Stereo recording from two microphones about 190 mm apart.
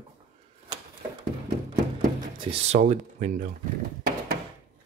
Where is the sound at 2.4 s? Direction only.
30° right (ahead or behind).